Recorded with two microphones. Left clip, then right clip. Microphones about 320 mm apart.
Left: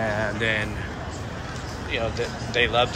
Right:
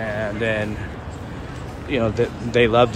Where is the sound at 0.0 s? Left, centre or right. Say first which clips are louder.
Right 1 dB; centre.